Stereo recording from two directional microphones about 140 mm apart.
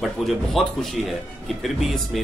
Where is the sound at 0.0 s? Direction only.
Centre (ahead or behind).